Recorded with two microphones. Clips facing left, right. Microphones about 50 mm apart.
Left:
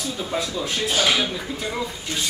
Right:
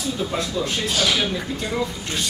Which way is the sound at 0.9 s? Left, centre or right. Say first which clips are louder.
Left 2 dB; left.